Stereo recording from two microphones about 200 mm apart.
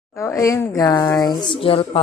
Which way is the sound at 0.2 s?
15° left (ahead or behind).